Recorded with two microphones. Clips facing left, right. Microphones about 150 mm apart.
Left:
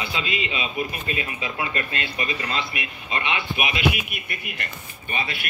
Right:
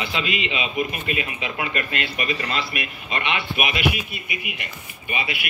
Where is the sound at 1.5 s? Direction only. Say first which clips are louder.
Right 2 dB; 30° left (ahead or behind).